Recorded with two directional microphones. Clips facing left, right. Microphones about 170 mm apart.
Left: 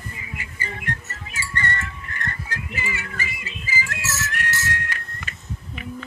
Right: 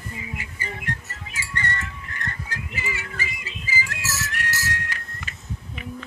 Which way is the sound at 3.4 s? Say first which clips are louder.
Left 1 dB; 55° left (ahead or behind).